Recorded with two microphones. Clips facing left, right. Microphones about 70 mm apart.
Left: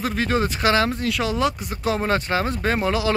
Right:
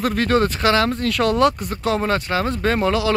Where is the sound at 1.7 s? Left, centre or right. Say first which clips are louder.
Right 2 dB; centre.